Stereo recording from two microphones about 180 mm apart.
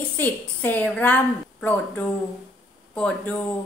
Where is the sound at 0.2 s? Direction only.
10° left (ahead or behind).